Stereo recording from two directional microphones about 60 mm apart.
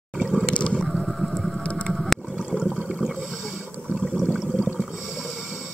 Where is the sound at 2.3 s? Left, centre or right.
Centre.